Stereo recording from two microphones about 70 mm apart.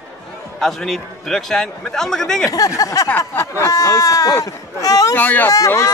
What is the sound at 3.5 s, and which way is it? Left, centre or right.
Speech, left.